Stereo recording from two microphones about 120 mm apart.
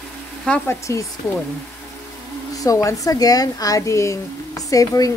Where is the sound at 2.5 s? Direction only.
25° left (ahead or behind).